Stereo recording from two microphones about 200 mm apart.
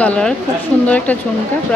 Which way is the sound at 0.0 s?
5° left (ahead or behind).